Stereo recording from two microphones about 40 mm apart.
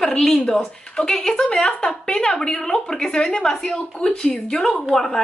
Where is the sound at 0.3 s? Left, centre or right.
Left.